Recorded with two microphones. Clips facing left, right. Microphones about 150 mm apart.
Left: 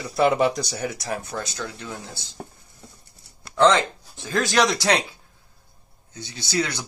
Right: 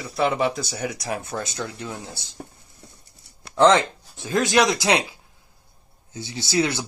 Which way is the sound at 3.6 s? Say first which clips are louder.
Right 2 dB; 20° right (ahead or behind).